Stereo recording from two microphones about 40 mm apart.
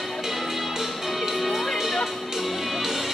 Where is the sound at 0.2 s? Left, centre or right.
Centre.